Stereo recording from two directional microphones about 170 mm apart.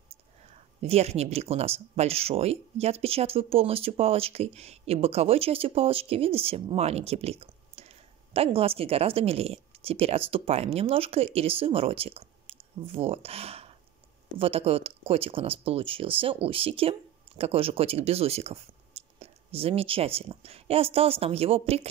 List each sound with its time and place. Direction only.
0.8 s speech: 40° right (ahead or behind)